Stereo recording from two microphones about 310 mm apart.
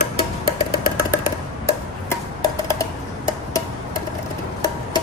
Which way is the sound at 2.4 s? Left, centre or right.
Centre.